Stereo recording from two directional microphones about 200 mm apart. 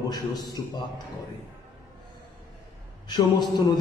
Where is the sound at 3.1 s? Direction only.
20° left (ahead or behind).